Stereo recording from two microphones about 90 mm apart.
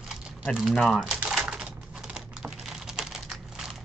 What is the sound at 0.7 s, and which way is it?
Speech, centre (ahead or behind).